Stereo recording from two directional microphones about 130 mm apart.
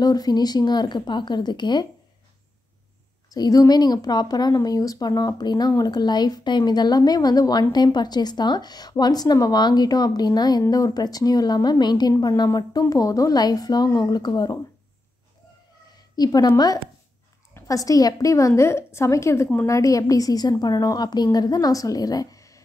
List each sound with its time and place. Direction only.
0.0 s speech: 30° left (ahead or behind)
3.3 s speech: 30° left (ahead or behind)
16.2 s a woman's voice: 30° left (ahead or behind)